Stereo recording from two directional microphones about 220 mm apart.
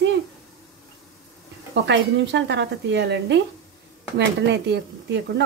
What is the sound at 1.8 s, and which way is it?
A woman's voice, 55° right (ahead or behind).